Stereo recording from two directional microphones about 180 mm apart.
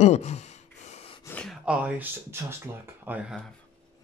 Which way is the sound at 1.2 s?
10° left (ahead or behind).